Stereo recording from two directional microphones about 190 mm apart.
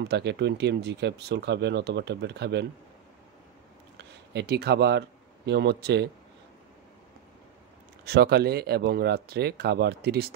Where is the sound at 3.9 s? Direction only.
60° right (ahead or behind).